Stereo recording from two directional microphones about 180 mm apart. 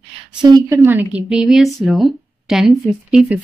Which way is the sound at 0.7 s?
10° right (ahead or behind).